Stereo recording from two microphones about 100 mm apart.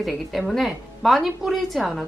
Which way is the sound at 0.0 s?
Centre (ahead or behind).